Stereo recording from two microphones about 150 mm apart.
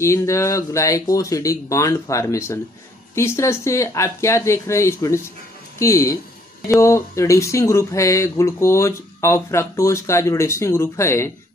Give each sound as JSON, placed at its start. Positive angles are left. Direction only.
{"t": 0.0, "sound": "speech", "side_deg": 20}